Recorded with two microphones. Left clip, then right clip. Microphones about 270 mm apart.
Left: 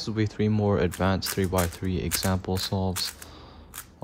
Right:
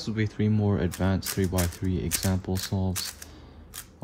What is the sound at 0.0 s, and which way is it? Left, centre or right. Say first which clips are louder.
Speech: left 2 dB; centre.